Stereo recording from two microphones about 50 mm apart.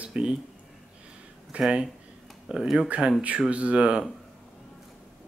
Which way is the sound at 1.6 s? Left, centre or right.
Centre.